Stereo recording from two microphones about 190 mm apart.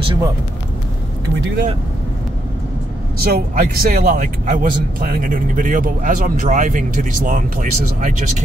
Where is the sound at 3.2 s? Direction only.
55° right (ahead or behind).